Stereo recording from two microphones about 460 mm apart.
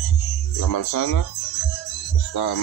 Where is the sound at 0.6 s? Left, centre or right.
Left.